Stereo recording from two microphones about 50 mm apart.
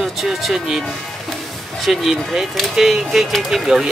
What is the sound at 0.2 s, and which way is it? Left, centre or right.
Speech, centre.